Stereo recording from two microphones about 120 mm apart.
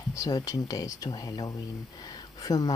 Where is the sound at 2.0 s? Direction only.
35° left (ahead or behind).